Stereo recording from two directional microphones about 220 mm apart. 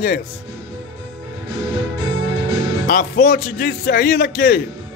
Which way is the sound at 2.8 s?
40° left (ahead or behind).